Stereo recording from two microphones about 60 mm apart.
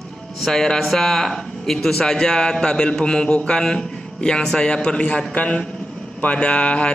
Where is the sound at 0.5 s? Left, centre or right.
Centre.